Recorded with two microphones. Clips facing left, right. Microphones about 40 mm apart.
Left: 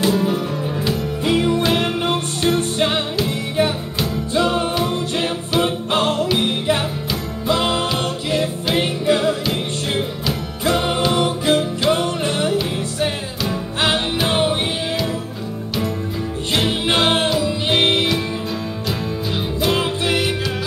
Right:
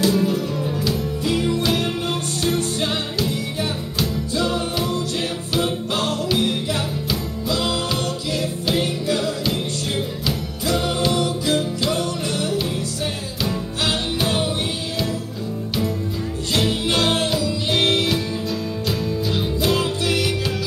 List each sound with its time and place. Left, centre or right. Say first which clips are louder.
0.0 s music: left 1 dB; left
4.3 s music: left 7 dB; left
16.5 s music: left 2 dB; left